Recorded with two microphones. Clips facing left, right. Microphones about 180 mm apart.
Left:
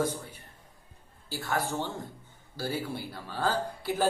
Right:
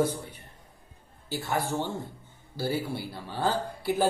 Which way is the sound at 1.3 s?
15° right (ahead or behind).